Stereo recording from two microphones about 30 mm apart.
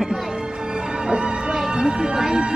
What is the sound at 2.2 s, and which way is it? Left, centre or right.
Music, right.